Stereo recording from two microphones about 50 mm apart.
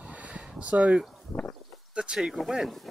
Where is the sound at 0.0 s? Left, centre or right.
Right.